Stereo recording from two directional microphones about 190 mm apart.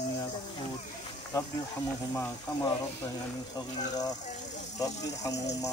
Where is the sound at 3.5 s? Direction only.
20° left (ahead or behind).